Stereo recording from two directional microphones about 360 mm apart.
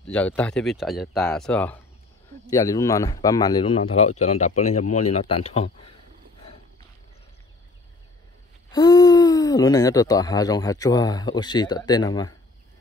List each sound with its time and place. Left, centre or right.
0.0 s speech: centre
8.7 s speech: centre